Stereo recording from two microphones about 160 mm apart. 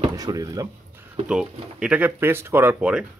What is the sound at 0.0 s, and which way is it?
Drawer open or close, 25° right (ahead or behind).